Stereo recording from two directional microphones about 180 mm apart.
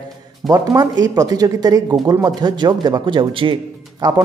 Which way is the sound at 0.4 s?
Centre (ahead or behind).